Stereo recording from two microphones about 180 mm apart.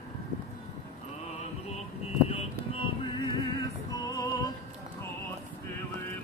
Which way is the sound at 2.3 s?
30° left (ahead or behind).